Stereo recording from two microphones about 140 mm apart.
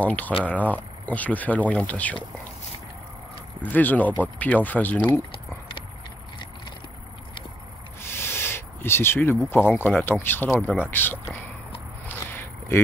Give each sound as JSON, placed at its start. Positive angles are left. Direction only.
{"t": 0.0, "sound": "speech", "side_deg": 10}
{"t": 3.6, "sound": "speech", "side_deg": 15}
{"t": 8.0, "sound": "owl", "side_deg": 15}
{"t": 9.5, "sound": "speech", "side_deg": 15}
{"t": 12.1, "sound": "a sound", "side_deg": 15}